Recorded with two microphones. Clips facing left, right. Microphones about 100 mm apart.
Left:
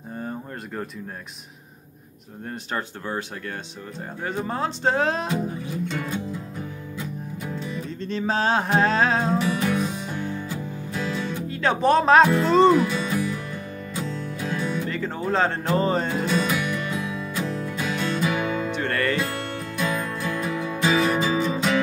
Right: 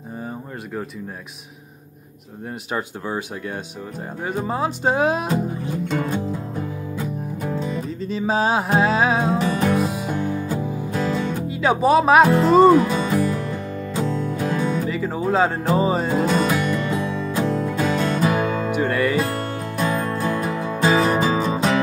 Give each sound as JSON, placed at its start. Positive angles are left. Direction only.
{"t": 0.2, "sound": "a sound", "side_deg": -5}
{"t": 2.7, "sound": "music", "side_deg": -15}
{"t": 5.3, "sound": "music", "side_deg": -40}
{"t": 8.0, "sound": "music", "side_deg": -10}
{"t": 9.4, "sound": "music", "side_deg": -35}
{"t": 11.4, "sound": "speech", "side_deg": -10}
{"t": 12.4, "sound": "music", "side_deg": -10}
{"t": 12.7, "sound": "music", "side_deg": -40}
{"t": 14.9, "sound": "speech", "side_deg": -10}
{"t": 15.7, "sound": "music", "side_deg": -10}
{"t": 16.2, "sound": "music", "side_deg": -40}
{"t": 18.7, "sound": "music", "side_deg": -10}
{"t": 19.3, "sound": "music", "side_deg": -40}